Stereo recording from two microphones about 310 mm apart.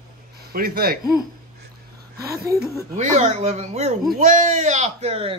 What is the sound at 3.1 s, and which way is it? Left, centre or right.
Speech, right.